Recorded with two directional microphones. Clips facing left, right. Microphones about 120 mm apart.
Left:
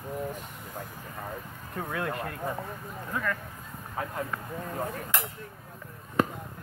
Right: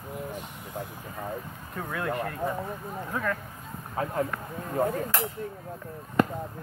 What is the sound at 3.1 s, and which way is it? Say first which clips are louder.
Speech: right 1 dB; 10° right (ahead or behind).